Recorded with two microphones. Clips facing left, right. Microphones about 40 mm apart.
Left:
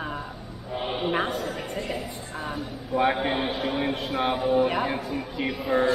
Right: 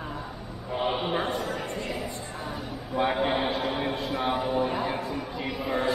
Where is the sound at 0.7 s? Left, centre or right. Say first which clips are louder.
Left 1 dB; centre.